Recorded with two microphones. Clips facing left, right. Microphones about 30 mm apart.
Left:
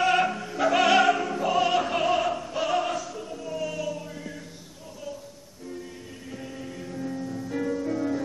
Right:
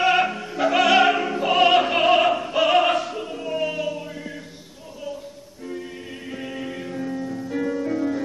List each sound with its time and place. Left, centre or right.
0.0 s music: right
0.9 s opera: right
1.5 s opera: right
6.3 s music: right
7.1 s music: right